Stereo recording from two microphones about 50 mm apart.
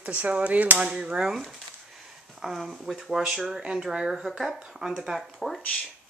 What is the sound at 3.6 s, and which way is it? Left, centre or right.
Speech, centre.